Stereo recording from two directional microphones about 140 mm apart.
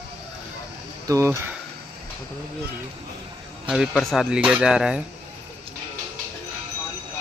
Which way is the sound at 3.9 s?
Centre (ahead or behind).